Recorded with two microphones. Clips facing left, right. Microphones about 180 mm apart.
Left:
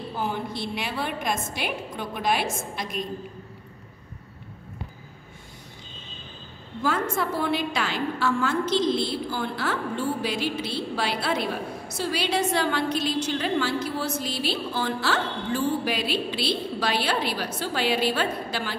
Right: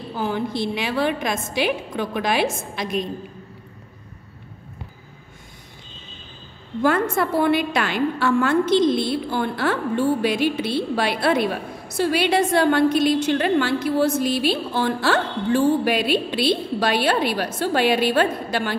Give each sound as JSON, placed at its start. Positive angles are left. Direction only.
{"t": 0.2, "sound": "a woman's voice", "side_deg": -90}
{"t": 6.8, "sound": "a woman's voice", "side_deg": -65}